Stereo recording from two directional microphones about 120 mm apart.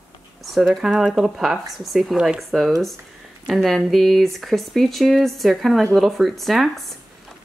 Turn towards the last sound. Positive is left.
turn(degrees=0)  # may be behind; listen again after turning